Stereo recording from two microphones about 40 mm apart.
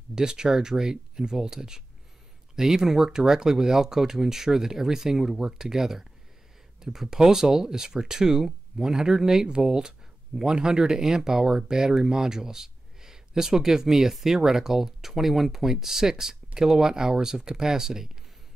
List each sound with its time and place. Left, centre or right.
0.1 s speech: centre